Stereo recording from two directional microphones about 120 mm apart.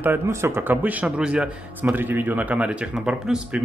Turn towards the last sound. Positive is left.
turn(degrees=-5)  # may be behind; listen again after turning